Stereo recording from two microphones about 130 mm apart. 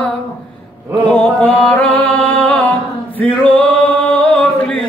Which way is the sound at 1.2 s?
10° left (ahead or behind).